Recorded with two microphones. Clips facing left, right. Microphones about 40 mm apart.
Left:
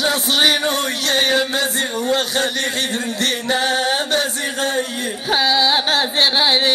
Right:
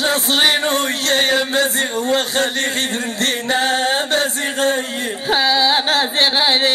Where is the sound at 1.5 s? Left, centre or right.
Right.